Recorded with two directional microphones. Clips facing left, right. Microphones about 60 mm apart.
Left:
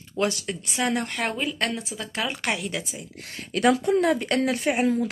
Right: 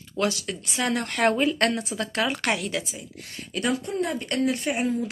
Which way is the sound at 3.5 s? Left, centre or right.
Left.